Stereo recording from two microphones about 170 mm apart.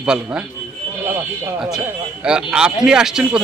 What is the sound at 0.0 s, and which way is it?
Speech, 5° right (ahead or behind).